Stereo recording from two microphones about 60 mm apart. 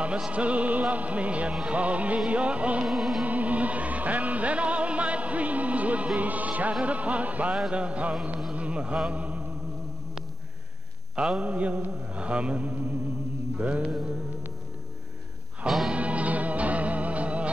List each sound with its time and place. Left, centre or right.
0.0 s mantra: centre
2.8 s music: centre
3.3 s music: right
7.7 s mantra: right
8.5 s a sound: right
9.1 s mantra: right
11.3 s mantra: right
15.6 s music: centre
15.9 s music: right